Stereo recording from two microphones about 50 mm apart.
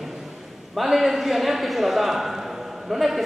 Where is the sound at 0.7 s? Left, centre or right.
Centre.